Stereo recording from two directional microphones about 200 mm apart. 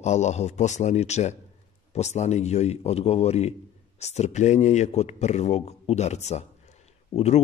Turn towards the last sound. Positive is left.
turn(degrees=30)  # may be behind; listen again after turning